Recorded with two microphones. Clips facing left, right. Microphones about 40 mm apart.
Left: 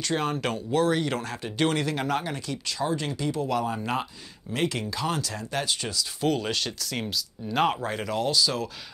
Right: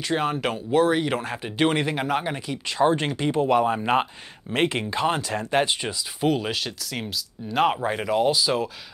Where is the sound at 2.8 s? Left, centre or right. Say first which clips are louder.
Right 8 dB; right.